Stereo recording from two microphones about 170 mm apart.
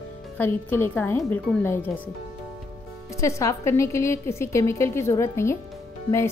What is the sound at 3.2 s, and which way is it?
A woman's voice, 15° left (ahead or behind).